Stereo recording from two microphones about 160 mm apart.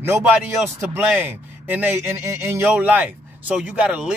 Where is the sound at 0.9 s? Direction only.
10° right (ahead or behind).